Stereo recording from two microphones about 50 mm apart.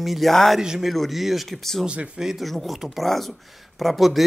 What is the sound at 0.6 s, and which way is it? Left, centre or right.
A man's voice, centre.